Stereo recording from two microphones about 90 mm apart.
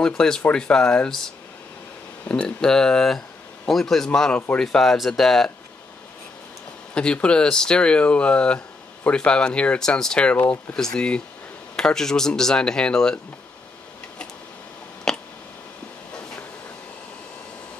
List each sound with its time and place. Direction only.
0.0 s speech: 10° left (ahead or behind)
6.9 s speech: 10° left (ahead or behind)
15.1 s a sound: 5° left (ahead or behind)